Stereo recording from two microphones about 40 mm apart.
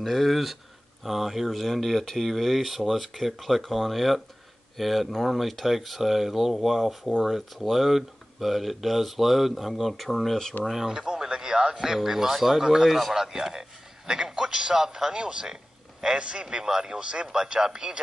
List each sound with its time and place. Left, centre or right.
0.0 s speech: centre
10.9 s a man's voice: centre